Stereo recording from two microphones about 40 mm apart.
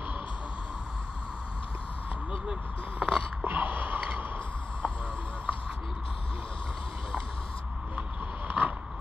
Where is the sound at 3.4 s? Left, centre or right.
Right.